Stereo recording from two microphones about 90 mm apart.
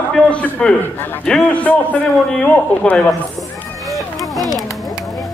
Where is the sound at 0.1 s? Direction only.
10° left (ahead or behind).